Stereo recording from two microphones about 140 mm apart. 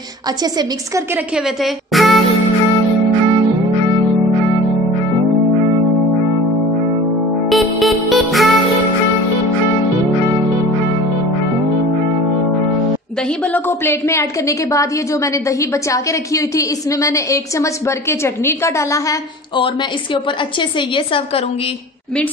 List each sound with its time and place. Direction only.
0.4 s a woman's voice: 30° right (ahead or behind)
1.3 s music: centre (ahead or behind)
7.4 s music: centre (ahead or behind)
13.5 s a woman's voice: 15° left (ahead or behind)
15.4 s a woman's voice: 20° left (ahead or behind)